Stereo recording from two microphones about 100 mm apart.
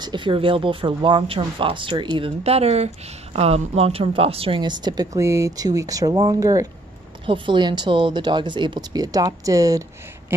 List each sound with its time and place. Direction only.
0.0 s speech: 55° right (ahead or behind)
2.1 s speech: 75° right (ahead or behind)
4.6 s speech: 45° right (ahead or behind)
5.1 s speech: 30° right (ahead or behind)
7.2 s speech: 55° right (ahead or behind); by 9.8 s 35° right (ahead or behind)